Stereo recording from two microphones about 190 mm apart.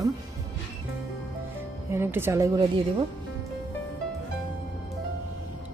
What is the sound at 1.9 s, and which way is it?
Speech, 10° right (ahead or behind).